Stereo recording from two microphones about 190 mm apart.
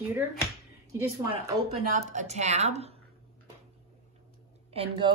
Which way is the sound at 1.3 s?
25° right (ahead or behind).